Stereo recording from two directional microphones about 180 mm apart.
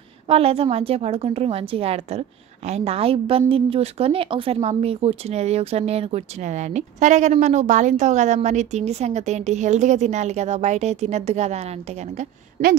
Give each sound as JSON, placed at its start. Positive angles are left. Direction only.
{"t": 0.3, "sound": "a woman's voice", "side_deg": -35}